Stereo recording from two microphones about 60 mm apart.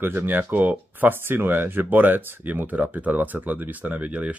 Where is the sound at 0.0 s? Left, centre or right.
Right.